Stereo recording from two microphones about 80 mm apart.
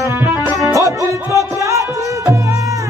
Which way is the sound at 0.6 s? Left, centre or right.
Right.